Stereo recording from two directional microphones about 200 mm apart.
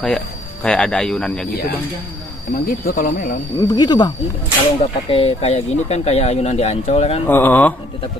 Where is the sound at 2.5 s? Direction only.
45° left (ahead or behind).